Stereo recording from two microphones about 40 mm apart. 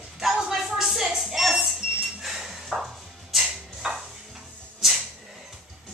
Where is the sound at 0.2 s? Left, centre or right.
Centre.